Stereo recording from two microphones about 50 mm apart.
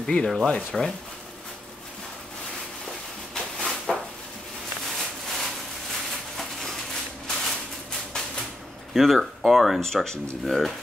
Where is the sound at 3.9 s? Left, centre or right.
Centre.